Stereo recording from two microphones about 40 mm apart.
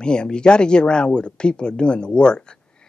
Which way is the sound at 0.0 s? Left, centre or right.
Left.